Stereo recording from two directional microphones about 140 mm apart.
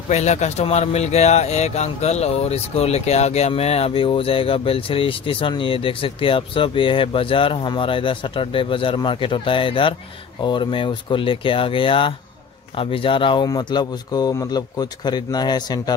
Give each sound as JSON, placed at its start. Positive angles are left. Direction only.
{"t": 0.1, "sound": "speech", "side_deg": 55}